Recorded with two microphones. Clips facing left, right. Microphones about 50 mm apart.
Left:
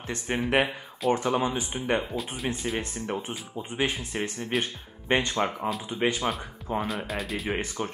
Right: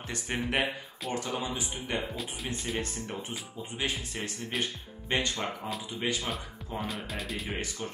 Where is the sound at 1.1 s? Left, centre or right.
Left.